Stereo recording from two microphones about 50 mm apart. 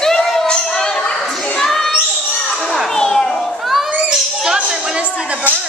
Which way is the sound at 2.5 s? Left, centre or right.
Centre.